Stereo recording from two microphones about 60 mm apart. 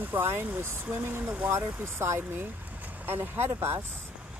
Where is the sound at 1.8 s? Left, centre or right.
Right.